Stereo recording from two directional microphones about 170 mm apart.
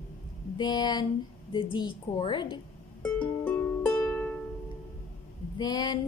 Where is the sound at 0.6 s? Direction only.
25° left (ahead or behind).